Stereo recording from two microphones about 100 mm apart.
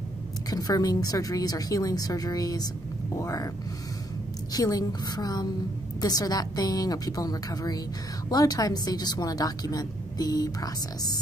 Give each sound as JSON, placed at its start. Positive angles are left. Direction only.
{"t": 0.5, "sound": "a woman's voice", "side_deg": 40}
{"t": 4.5, "sound": "a woman's voice", "side_deg": 40}